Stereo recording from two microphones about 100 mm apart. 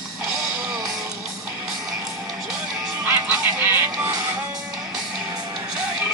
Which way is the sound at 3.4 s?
15° right (ahead or behind).